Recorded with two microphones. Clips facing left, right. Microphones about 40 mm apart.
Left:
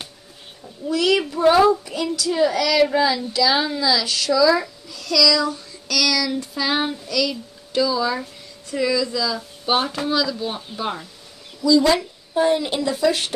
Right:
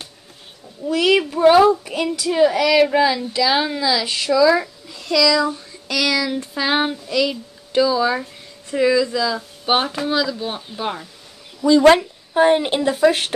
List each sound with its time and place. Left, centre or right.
0.8 s a woman's voice: right
4.8 s a sound: right
8.6 s a woman's voice: right
11.6 s a woman's voice: right